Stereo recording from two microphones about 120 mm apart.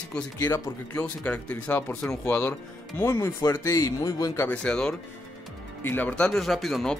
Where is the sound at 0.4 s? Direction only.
20° left (ahead or behind).